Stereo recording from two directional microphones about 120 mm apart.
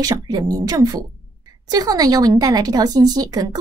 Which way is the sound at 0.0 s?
30° right (ahead or behind).